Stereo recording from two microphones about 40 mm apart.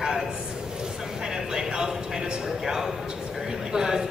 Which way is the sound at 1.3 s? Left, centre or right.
Centre.